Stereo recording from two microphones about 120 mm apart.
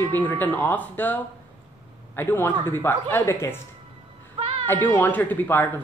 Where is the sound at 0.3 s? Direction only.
15° left (ahead or behind).